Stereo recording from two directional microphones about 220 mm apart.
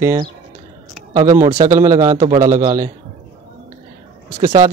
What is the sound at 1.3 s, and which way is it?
Speech, 20° right (ahead or behind).